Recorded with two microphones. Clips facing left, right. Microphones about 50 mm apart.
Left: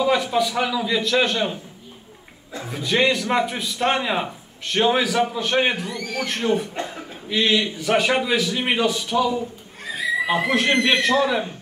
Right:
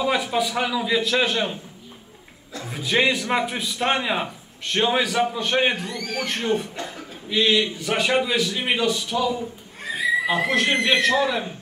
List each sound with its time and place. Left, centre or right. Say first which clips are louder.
0.0 s a man's voice: left 3 dB; centre
2.7 s a man's voice: left 1 dB; centre
6.7 s a man's voice: left 3 dB; left
7.2 s a man's voice: even; centre
10.4 s a man's voice: left 2 dB; centre